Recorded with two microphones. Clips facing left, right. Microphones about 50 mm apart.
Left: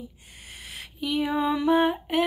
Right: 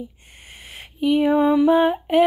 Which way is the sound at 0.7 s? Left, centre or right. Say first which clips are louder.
Right 10 dB; right.